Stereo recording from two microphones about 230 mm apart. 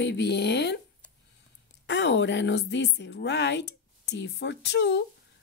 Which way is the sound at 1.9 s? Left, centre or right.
Left.